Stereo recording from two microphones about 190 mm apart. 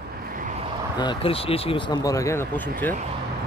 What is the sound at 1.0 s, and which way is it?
Speech, 25° left (ahead or behind).